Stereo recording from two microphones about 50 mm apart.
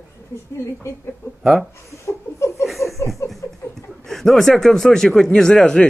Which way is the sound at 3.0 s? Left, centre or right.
Left.